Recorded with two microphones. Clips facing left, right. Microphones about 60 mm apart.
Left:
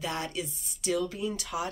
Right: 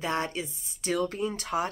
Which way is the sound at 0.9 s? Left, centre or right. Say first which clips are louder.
Right 2 dB; right.